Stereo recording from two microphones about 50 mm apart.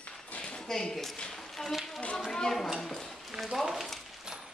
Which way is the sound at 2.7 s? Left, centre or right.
Centre.